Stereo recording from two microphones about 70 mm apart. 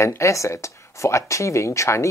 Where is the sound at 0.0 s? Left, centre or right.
Left.